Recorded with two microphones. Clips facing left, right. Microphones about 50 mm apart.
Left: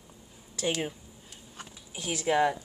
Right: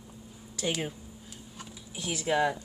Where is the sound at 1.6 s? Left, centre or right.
Left.